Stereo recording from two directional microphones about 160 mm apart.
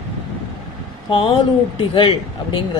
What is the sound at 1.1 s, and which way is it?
Speech, 30° left (ahead or behind).